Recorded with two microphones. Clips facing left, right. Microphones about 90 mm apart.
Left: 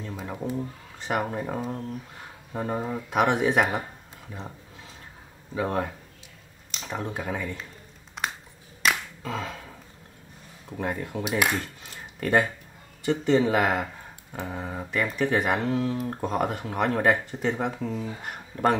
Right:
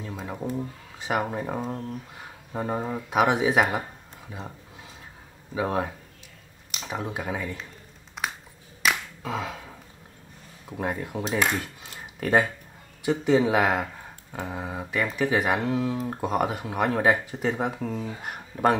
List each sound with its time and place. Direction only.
0.0 s speech: 5° right (ahead or behind)
8.2 s a sound: centre (ahead or behind)
8.8 s finger snapping: 5° right (ahead or behind)
10.7 s speech: 5° right (ahead or behind)
11.2 s cutlery: 10° left (ahead or behind)
11.6 s a sound: 5° right (ahead or behind)
13.0 s speech: 5° right (ahead or behind)